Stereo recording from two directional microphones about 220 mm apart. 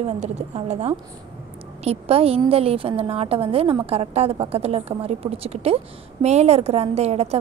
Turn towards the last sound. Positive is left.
turn(degrees=-30)  # may be behind; listen again after turning